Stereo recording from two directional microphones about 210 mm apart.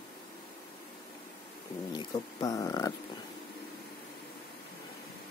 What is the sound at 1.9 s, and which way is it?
Speech, 20° left (ahead or behind).